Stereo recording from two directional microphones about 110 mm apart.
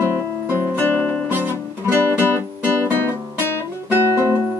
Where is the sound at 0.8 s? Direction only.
15° left (ahead or behind).